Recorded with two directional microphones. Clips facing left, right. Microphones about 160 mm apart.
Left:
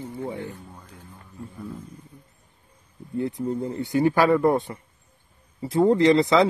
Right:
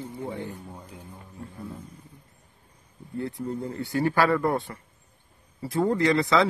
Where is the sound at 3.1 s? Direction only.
20° left (ahead or behind).